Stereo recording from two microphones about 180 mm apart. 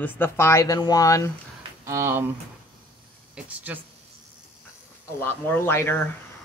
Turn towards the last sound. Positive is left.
turn(degrees=10)  # may be behind; listen again after turning